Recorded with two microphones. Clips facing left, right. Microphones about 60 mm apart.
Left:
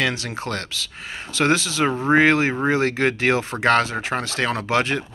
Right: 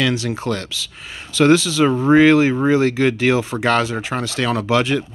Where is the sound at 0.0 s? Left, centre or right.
Left.